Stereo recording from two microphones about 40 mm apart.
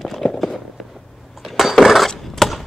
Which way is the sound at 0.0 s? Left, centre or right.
Centre.